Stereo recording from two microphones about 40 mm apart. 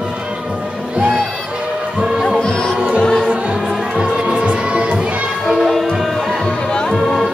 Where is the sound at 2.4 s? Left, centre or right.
Centre.